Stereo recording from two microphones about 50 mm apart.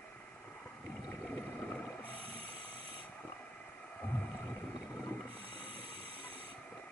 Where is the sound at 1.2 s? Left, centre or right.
Left.